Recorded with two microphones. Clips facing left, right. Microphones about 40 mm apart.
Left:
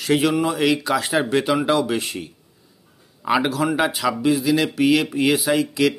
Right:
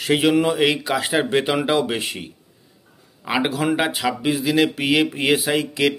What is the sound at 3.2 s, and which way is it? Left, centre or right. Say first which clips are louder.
Speech: left 2 dB; centre.